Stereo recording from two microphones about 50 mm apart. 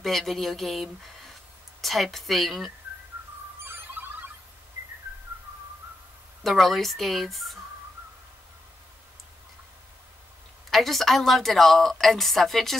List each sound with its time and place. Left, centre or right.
0.0 s a woman's voice: centre
3.6 s a sound: right
6.4 s a woman's voice: centre
10.7 s a woman's voice: centre